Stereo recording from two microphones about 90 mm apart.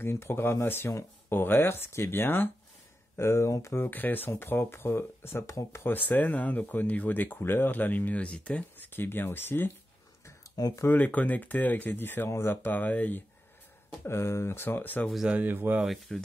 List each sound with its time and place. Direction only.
0.0 s speech: 25° left (ahead or behind)
5.9 s speech: 20° left (ahead or behind)
8.9 s speech: 25° left (ahead or behind)
10.5 s speech: 45° left (ahead or behind)
10.9 s speech: 15° left (ahead or behind)
14.0 s speech: 30° left (ahead or behind)
15.2 s speech: 20° right (ahead or behind)
15.8 s speech: centre (ahead or behind)